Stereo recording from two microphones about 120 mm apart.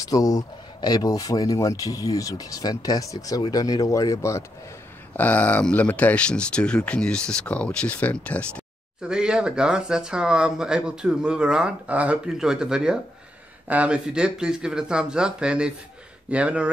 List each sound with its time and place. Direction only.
0.1 s speech: 30° left (ahead or behind)
5.1 s speech: 15° left (ahead or behind)
9.1 s speech: 5° right (ahead or behind)